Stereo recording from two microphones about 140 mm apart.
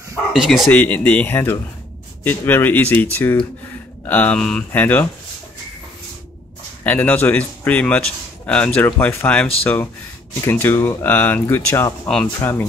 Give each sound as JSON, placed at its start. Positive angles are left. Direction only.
{"t": 0.3, "sound": "speech", "side_deg": 0}
{"t": 0.7, "sound": "speech", "side_deg": 10}
{"t": 6.8, "sound": "speech", "side_deg": 10}